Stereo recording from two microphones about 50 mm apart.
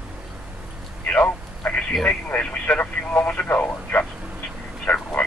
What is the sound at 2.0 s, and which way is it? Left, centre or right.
Speech, left.